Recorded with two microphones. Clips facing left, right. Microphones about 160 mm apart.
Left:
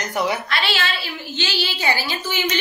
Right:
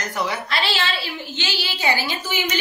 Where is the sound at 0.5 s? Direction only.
30° right (ahead or behind).